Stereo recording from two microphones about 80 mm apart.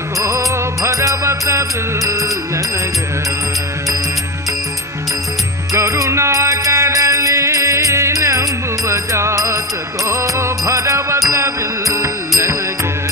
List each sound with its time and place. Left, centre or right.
0.2 s music: right
5.7 s music: right